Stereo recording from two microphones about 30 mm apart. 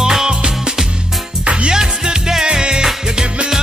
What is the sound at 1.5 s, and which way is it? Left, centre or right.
Music, right.